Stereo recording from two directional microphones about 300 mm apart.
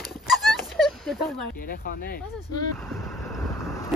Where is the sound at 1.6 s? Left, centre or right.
Left.